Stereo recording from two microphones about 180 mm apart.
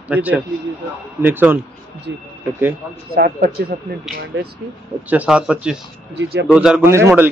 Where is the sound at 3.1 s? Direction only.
55° right (ahead or behind).